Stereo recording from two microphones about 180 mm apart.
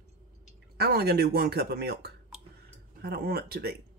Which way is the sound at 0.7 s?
60° right (ahead or behind).